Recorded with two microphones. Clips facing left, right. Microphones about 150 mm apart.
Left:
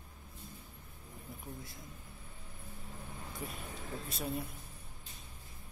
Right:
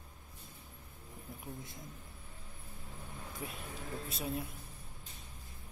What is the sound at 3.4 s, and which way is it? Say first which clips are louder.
Speech: even; centre (ahead or behind).